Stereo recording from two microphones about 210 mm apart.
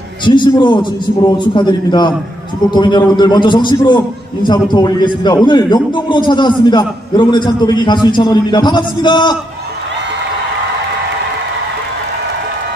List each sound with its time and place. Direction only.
0.2 s a man's voice: 20° left (ahead or behind)